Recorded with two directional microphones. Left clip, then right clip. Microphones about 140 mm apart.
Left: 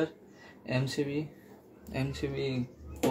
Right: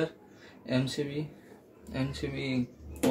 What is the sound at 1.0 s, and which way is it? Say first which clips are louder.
Speech: left 1 dB; 45° left (ahead or behind).